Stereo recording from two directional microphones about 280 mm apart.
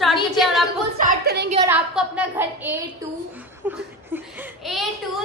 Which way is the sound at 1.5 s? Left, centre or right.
Centre.